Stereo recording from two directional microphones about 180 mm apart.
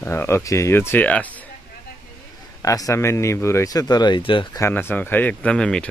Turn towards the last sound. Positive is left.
turn(degrees=5)  # may be behind; listen again after turning